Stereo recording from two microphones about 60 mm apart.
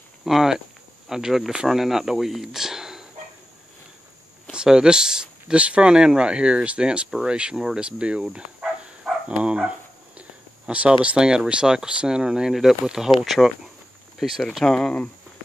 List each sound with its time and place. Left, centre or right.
0.2 s speech: centre
4.5 s speech: centre
9.3 s dog: centre
10.7 s speech: right; by 15.0 s centre